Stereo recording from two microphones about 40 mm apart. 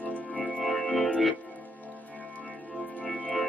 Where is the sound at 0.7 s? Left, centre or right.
Centre.